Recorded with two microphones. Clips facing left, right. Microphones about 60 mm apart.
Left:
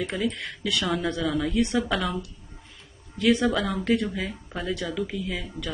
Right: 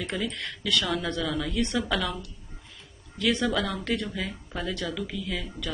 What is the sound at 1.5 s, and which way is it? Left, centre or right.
Speech, centre.